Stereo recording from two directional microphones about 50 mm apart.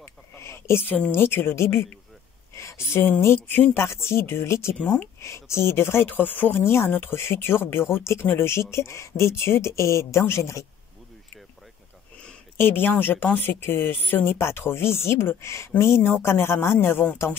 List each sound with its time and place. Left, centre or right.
0.0 s a sound: left
1.1 s speech: left
2.5 s speech: left
4.7 s speech: left
5.2 s speech: left
6.0 s speech: left
6.9 s speech: left
7.2 s speech: left
12.5 s speech: left
16.7 s speech: left